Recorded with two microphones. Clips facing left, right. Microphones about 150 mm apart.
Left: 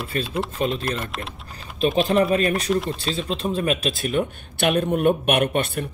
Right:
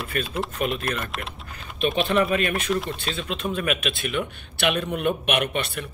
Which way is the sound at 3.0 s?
35° left (ahead or behind).